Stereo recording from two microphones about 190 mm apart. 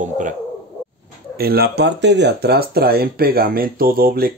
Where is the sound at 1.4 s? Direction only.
55° right (ahead or behind).